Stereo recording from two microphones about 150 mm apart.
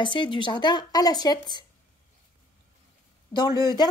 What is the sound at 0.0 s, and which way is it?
Speech, 30° left (ahead or behind).